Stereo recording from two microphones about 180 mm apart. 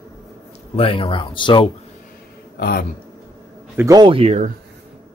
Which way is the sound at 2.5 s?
60° left (ahead or behind).